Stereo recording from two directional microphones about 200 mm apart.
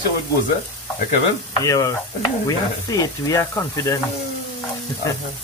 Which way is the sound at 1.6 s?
15° left (ahead or behind).